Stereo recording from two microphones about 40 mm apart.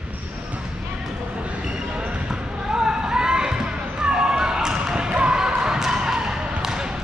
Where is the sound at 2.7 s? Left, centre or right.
Centre.